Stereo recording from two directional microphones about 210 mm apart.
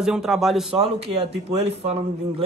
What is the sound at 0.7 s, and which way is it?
Speech, 30° right (ahead or behind).